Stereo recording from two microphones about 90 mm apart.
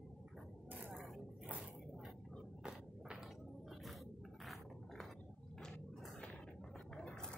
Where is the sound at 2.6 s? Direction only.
10° right (ahead or behind).